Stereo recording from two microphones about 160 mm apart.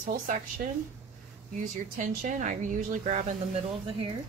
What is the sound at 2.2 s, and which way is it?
Speech, 50° right (ahead or behind).